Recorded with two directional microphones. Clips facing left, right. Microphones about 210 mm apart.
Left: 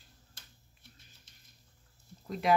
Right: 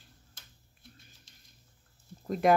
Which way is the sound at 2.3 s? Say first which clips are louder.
Right 4 dB; 50° right (ahead or behind).